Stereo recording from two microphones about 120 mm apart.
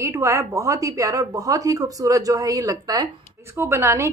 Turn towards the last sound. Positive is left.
turn(degrees=-20)  # may be behind; listen again after turning